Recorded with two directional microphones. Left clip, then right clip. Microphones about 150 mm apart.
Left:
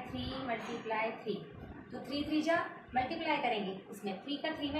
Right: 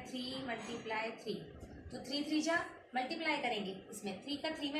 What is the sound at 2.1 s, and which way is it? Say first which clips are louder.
A woman's voice: left 3 dB; 15° right (ahead or behind).